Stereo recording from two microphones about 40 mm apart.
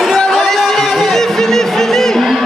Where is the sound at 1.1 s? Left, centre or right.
Centre.